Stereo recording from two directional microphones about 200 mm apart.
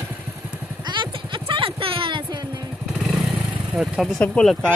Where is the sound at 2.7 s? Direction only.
Centre (ahead or behind).